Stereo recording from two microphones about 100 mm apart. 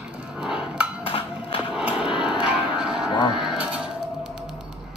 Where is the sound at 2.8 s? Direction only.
10° right (ahead or behind).